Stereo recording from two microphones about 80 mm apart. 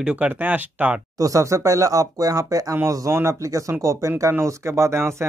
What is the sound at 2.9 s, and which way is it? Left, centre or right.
Speech, right.